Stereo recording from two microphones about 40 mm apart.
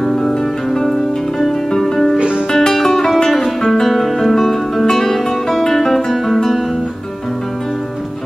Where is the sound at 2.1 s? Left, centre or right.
Right.